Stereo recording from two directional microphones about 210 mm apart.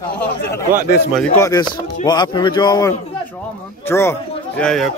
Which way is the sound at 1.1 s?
10° left (ahead or behind).